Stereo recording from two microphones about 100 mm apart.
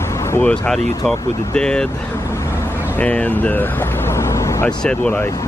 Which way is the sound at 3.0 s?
15° left (ahead or behind).